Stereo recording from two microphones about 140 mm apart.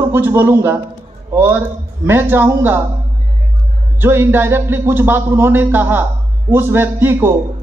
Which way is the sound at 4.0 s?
15° right (ahead or behind).